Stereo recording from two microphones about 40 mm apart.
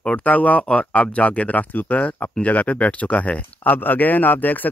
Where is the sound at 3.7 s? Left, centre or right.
Left.